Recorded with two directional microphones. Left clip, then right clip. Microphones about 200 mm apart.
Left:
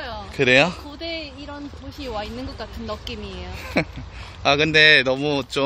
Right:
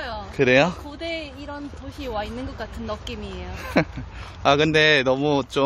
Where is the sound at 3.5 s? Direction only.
15° right (ahead or behind).